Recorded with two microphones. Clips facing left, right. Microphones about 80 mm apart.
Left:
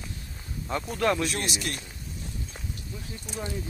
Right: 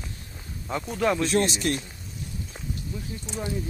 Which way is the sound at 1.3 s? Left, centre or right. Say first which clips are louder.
Right 8 dB; right.